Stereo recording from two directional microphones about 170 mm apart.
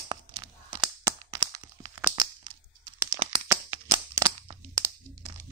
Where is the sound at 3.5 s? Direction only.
20° right (ahead or behind).